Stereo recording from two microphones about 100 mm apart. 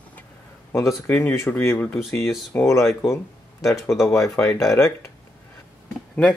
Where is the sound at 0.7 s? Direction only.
30° left (ahead or behind).